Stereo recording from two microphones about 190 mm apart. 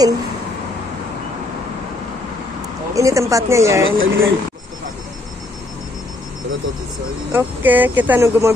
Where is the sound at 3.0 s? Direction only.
15° right (ahead or behind).